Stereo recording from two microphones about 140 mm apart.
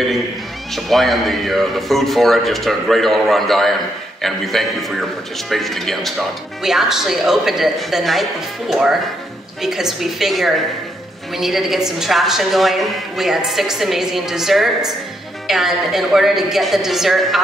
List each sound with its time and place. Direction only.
0.7 s a woman's voice: centre (ahead or behind)